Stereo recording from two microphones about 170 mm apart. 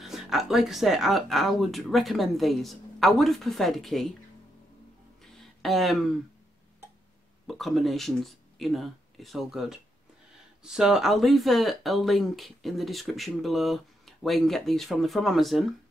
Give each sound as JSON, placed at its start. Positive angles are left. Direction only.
{"t": 0.0, "sound": "speech", "side_deg": 0}
{"t": 5.2, "sound": "a sound", "side_deg": 0}
{"t": 7.4, "sound": "speech", "side_deg": 0}